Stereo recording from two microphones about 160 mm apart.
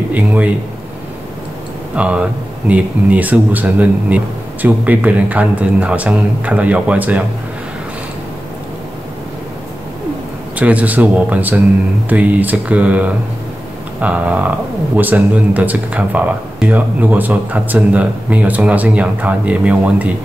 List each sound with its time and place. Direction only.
0.1 s speech: 10° right (ahead or behind)
2.0 s speech: 10° right (ahead or behind)
10.6 s speech: 10° right (ahead or behind)